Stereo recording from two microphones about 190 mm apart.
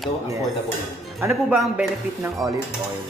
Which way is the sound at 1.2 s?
10° right (ahead or behind).